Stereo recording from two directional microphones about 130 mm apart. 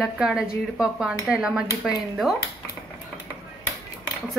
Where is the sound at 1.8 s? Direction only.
Centre (ahead or behind).